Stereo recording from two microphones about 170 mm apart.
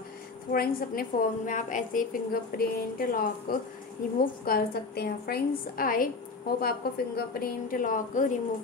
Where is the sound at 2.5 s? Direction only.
60° left (ahead or behind).